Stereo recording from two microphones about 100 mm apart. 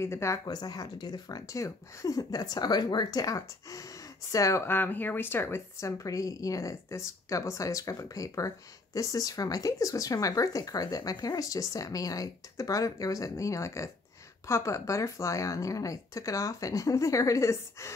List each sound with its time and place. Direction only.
0.0 s speech: 25° left (ahead or behind)
0.5 s speech: 40° left (ahead or behind)